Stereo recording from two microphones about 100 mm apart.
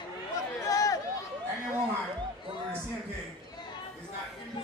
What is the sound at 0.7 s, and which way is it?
Run, 35° left (ahead or behind).